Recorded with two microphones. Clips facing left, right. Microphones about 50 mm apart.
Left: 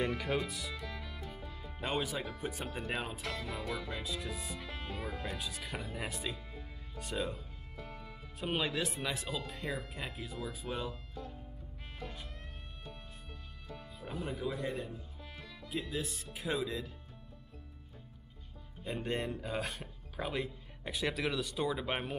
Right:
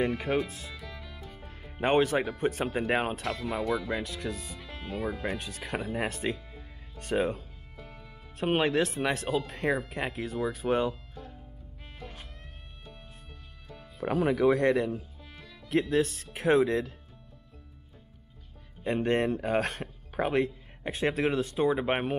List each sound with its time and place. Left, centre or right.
0.5 s speech: right
0.7 s music: centre
1.4 s speech: right
3.2 s speech: centre
4.0 s speech: right
4.6 s speech: centre
5.4 s speech: right
7.7 s music: centre
8.4 s speech: right
13.9 s speech: right
18.9 s speech: right
20.8 s speech: right